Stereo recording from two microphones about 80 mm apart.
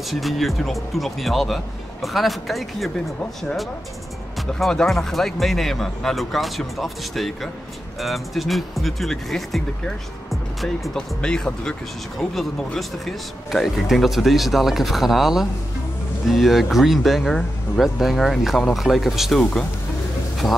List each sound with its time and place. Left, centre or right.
0.1 s speech: centre
4.4 s speech: centre
20.4 s speech: left